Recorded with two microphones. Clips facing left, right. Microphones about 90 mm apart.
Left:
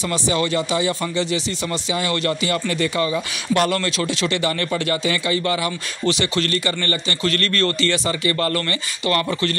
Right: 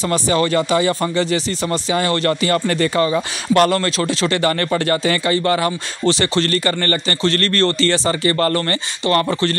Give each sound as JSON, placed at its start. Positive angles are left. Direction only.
{"t": 0.1, "sound": "a man's voice", "side_deg": -45}